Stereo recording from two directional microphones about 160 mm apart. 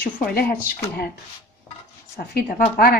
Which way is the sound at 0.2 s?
65° left (ahead or behind).